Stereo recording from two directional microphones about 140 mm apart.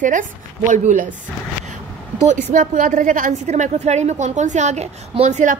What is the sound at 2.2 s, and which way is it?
Speech, 60° right (ahead or behind).